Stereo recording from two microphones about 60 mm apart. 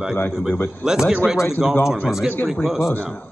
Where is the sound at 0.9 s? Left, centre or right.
Centre.